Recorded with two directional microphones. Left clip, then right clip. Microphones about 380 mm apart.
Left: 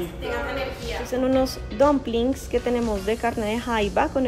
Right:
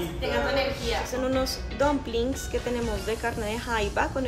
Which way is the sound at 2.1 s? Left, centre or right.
Centre.